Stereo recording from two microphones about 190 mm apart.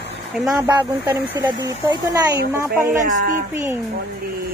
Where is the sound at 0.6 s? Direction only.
20° right (ahead or behind).